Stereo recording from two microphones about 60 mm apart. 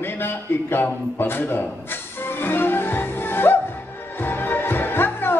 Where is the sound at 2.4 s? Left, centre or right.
Left.